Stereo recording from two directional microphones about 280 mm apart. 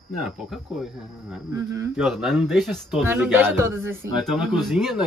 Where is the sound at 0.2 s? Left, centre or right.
Centre.